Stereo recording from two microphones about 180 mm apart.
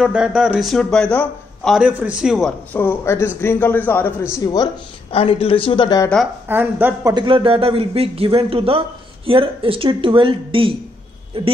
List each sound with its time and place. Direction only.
0.0 s speech: 5° right (ahead or behind)
2.7 s speech: 10° left (ahead or behind)
5.1 s speech: 30° left (ahead or behind)
6.4 s a woman's voice: 10° right (ahead or behind)
7.2 s a man's voice: 30° right (ahead or behind)